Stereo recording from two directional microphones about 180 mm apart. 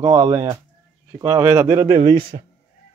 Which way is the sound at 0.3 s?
25° right (ahead or behind).